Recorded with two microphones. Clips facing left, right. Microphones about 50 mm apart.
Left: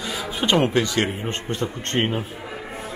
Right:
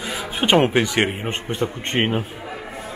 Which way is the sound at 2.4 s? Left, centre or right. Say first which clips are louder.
Right 1 dB; centre.